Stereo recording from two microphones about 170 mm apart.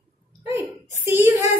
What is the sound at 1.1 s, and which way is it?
Speech, 10° right (ahead or behind).